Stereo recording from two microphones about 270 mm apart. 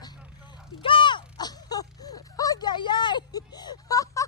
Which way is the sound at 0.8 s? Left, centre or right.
Centre.